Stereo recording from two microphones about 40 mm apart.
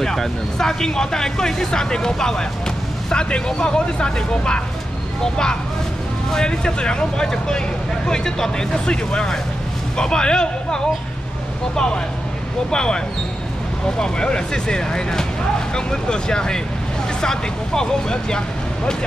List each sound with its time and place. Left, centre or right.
0.0 s speech: centre